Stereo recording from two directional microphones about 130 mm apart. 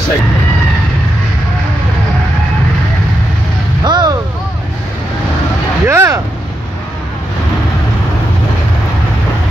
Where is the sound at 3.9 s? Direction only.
35° right (ahead or behind).